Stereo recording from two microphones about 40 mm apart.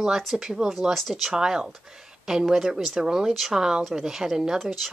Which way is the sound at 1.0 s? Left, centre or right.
Centre.